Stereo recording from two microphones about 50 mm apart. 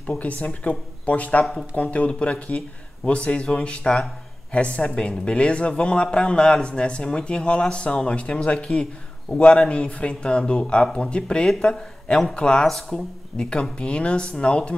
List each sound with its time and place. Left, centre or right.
0.4 s speech: left
1.4 s speech: centre
1.8 s speech: left
12.6 s speech: centre
13.4 s speech: centre